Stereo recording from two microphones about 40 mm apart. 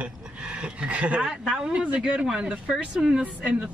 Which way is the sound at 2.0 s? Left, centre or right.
Centre.